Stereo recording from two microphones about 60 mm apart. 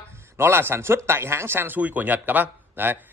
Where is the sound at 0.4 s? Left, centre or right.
Right.